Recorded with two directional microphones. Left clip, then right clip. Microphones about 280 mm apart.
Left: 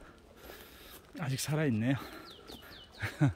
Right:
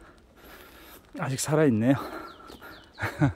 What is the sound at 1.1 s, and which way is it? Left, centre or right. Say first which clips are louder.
Speech: right 11 dB; centre.